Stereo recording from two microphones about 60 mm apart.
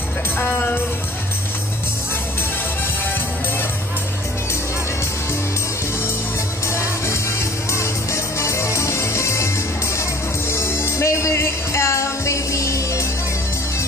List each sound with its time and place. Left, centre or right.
0.4 s music: left
6.7 s music: left
10.5 s music: left